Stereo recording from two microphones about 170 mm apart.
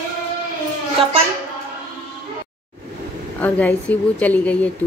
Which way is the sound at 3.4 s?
10° left (ahead or behind).